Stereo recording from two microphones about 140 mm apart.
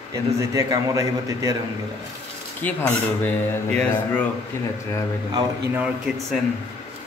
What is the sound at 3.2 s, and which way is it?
A man's voice, 10° left (ahead or behind).